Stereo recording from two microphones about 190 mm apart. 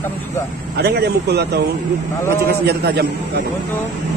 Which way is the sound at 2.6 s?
60° right (ahead or behind).